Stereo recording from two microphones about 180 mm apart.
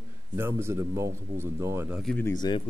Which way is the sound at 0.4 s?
15° right (ahead or behind).